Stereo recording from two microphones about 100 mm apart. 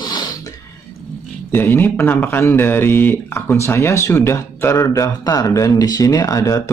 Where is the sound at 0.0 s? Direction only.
45° left (ahead or behind).